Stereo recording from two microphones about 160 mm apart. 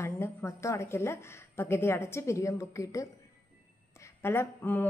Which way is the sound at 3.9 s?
15° left (ahead or behind).